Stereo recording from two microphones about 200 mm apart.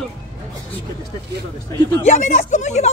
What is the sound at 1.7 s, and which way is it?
Speech, 15° left (ahead or behind).